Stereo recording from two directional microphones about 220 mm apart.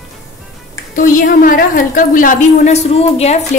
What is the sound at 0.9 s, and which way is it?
A woman's voice, 40° left (ahead or behind).